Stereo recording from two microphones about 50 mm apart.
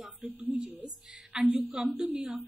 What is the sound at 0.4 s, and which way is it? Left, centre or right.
Speech, right.